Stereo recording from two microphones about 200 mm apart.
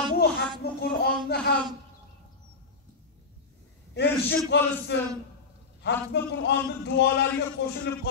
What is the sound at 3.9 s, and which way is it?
A man's voice, 55° left (ahead or behind).